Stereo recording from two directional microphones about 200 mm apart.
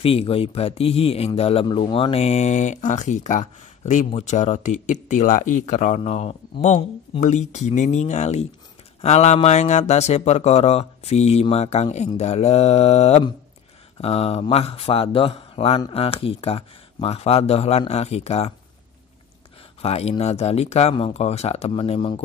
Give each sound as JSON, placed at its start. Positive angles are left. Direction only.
{"t": 0.0, "sound": "speech", "side_deg": 30}
{"t": 19.8, "sound": "speech", "side_deg": 30}